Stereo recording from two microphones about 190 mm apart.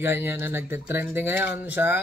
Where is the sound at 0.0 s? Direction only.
10° right (ahead or behind).